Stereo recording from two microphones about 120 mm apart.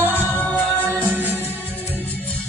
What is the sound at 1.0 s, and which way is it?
Music, 15° right (ahead or behind).